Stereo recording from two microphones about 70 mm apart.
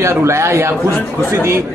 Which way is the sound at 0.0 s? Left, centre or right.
Right.